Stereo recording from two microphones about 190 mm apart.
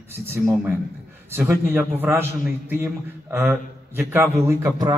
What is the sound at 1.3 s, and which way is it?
A man's voice, 15° right (ahead or behind).